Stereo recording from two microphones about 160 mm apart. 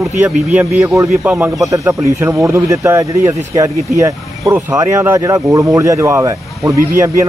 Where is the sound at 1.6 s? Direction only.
20° right (ahead or behind).